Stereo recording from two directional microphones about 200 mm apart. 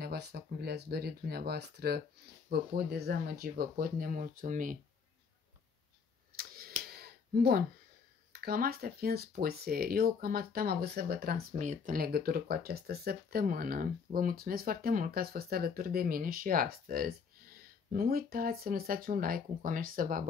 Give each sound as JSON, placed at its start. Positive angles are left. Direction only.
{"t": 0.0, "sound": "speech", "side_deg": -50}
{"t": 6.3, "sound": "a sound", "side_deg": -50}
{"t": 8.3, "sound": "speech", "side_deg": -50}